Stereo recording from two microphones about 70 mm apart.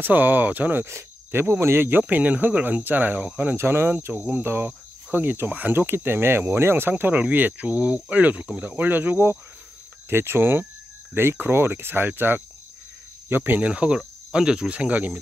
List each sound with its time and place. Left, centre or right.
0.0 s cricket: right
3.5 s cricket: right
10.0 s speech: right
11.1 s cricket: right
13.3 s speech: right